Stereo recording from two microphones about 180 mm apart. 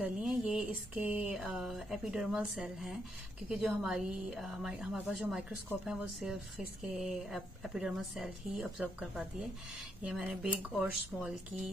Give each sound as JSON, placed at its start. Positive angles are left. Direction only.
{"t": 0.0, "sound": "speech", "side_deg": 0}